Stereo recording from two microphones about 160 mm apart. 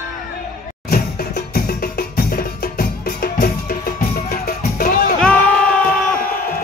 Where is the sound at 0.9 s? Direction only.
70° left (ahead or behind).